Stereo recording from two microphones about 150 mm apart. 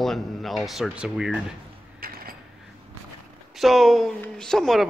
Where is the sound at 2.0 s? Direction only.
75° right (ahead or behind).